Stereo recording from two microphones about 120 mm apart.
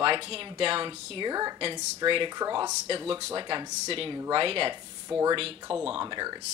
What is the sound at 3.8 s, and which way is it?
Speech, 50° right (ahead or behind).